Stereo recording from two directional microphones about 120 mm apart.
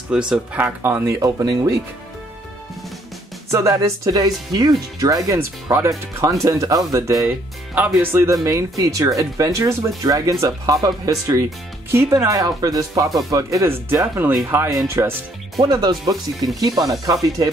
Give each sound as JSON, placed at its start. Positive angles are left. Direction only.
{"t": 0.1, "sound": "speech", "side_deg": -10}
{"t": 3.5, "sound": "speech", "side_deg": -25}
{"t": 16.7, "sound": "speech", "side_deg": 0}
{"t": 17.0, "sound": "speech", "side_deg": -30}